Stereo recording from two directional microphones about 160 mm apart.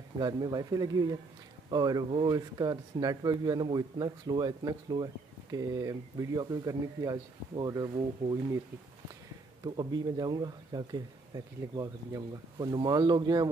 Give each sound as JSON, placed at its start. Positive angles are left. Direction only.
{"t": 0.2, "sound": "speech", "side_deg": -25}
{"t": 9.6, "sound": "speech", "side_deg": -25}